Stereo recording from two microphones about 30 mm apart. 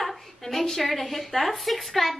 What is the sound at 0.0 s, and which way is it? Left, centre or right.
A woman's voice, centre.